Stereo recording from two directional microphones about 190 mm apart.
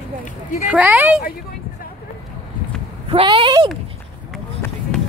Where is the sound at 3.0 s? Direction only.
30° right (ahead or behind).